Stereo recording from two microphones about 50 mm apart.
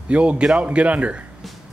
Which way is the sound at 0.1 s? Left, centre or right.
Right.